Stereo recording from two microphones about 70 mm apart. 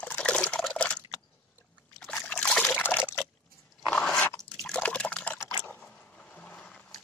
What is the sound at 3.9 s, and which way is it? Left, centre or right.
Biting, centre.